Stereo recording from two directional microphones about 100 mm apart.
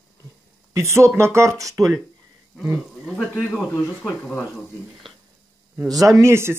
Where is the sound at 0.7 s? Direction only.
30° right (ahead or behind).